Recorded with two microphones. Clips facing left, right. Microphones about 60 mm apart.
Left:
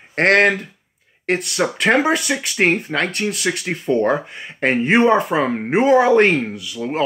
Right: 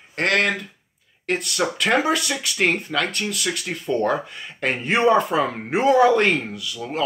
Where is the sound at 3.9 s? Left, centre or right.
Left.